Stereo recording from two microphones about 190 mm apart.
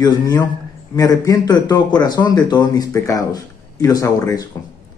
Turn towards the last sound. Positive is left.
turn(degrees=20)  # may be behind; listen again after turning